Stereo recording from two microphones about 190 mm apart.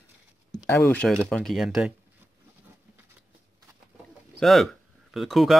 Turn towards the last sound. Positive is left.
turn(degrees=0)  # may be behind; listen again after turning